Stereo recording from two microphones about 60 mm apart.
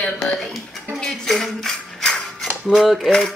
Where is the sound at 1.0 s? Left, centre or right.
Centre.